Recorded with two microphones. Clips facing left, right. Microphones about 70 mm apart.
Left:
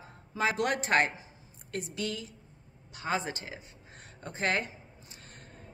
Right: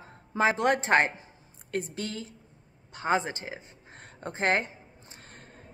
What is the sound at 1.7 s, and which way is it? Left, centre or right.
A woman's voice, right.